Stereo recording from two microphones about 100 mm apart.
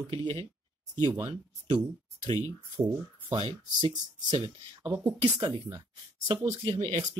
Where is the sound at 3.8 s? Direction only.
45° right (ahead or behind).